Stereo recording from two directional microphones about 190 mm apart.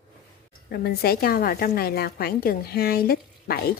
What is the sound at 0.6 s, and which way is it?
A woman's voice, 55° left (ahead or behind).